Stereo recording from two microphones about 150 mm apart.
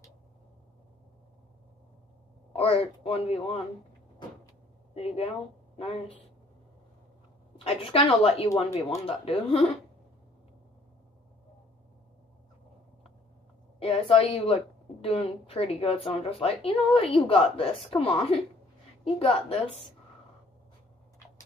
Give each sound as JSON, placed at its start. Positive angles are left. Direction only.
{"t": 2.5, "sound": "a woman's voice", "side_deg": 40}
{"t": 4.9, "sound": "a woman's voice", "side_deg": 40}
{"t": 7.5, "sound": "a woman's voice", "side_deg": 40}
{"t": 13.7, "sound": "a woman's voice", "side_deg": 40}